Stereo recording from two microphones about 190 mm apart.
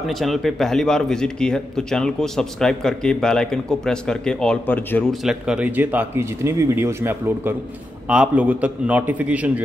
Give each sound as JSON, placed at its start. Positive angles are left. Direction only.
{"t": 0.0, "sound": "a man's voice", "side_deg": 0}
{"t": 5.2, "sound": "speech", "side_deg": -5}